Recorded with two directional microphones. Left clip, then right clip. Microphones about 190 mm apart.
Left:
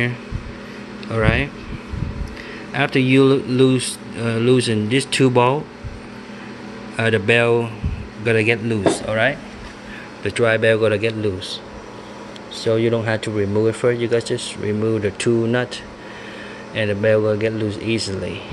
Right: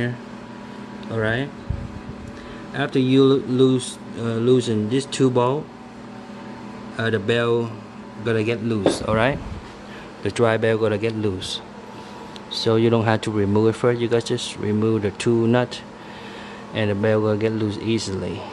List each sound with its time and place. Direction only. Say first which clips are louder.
1.0 s speech: left 4 dB; centre (ahead or behind)
2.7 s speech: left 3 dB; centre (ahead or behind)
7.0 s speech: left 5 dB; centre (ahead or behind)
9.0 s speech: left 2 dB; 25° right (ahead or behind)